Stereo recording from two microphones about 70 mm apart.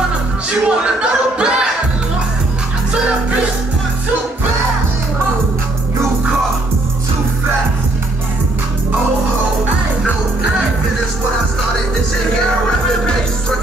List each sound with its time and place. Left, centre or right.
0.5 s music: centre